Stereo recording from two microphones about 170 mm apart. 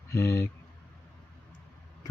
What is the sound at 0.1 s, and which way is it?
Speech, 15° left (ahead or behind).